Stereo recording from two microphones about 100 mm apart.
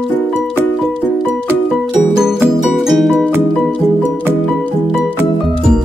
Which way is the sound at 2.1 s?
5° right (ahead or behind).